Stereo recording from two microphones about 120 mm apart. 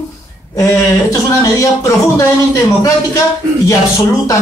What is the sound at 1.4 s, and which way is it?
Speech, 25° left (ahead or behind).